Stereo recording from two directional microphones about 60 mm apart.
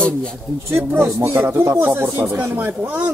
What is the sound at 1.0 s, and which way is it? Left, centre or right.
Speech, right.